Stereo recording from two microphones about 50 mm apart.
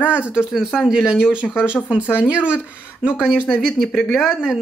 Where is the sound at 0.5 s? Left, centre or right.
Centre.